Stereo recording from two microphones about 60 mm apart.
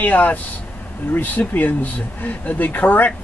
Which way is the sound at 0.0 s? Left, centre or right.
Left.